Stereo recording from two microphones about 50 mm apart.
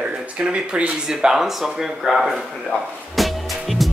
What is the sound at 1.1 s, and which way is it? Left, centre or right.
Speech, centre.